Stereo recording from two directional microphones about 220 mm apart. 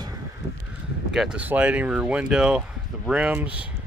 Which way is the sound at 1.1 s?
5° right (ahead or behind).